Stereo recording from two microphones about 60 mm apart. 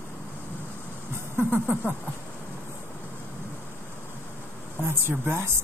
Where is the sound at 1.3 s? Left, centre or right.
Right.